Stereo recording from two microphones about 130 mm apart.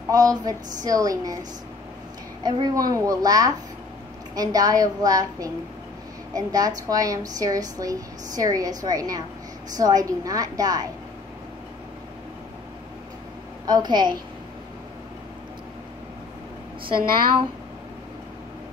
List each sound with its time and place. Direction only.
0.1 s a woman's voice: 30° right (ahead or behind)
2.4 s a woman's voice: 30° right (ahead or behind)
13.7 s a woman's voice: 30° right (ahead or behind)